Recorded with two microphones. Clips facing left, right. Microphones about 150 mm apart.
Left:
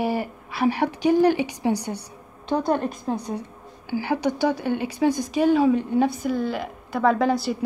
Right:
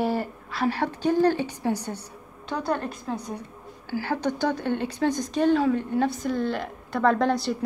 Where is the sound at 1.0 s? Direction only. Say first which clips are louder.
Left 3 dB; 15° left (ahead or behind).